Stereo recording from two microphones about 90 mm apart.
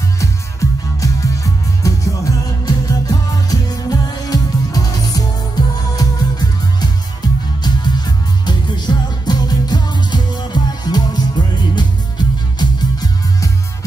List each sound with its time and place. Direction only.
0.2 s music: 40° left (ahead or behind)